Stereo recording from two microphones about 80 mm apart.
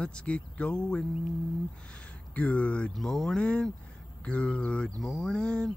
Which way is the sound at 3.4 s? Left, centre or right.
Centre.